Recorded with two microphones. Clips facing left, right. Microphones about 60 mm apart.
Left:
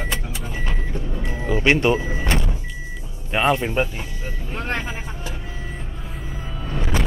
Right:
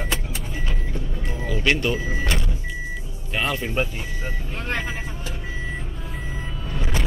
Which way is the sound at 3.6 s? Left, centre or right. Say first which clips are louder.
Left 3 dB; centre.